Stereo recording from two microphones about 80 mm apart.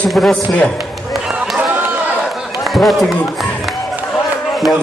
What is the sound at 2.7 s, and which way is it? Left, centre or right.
Speech, centre.